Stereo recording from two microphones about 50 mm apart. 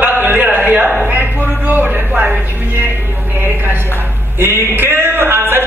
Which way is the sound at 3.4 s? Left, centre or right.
Right.